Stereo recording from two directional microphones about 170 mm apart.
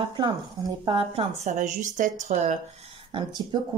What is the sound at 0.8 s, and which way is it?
A woman's voice, 30° right (ahead or behind).